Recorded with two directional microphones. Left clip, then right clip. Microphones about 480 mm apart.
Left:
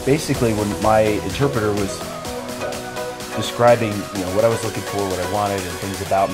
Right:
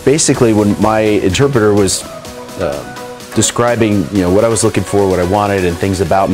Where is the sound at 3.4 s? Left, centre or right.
Right.